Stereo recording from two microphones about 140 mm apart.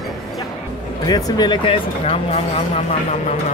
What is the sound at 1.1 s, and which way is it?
Speech, 30° left (ahead or behind).